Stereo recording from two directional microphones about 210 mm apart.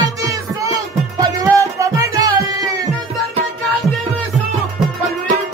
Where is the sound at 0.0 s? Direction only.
15° right (ahead or behind).